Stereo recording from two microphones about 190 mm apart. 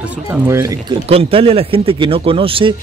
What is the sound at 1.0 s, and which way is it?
Speech, 30° right (ahead or behind).